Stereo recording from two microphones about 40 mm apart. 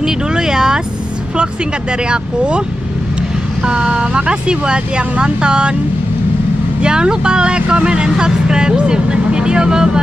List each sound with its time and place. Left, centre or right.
0.0 s a sound: centre
2.0 s speech: right
3.6 s speech: right
6.8 s speech: right